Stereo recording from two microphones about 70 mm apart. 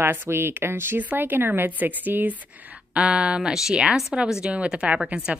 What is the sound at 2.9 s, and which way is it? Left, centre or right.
Speech, centre.